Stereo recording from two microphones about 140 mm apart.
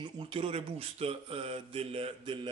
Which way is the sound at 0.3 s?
45° right (ahead or behind).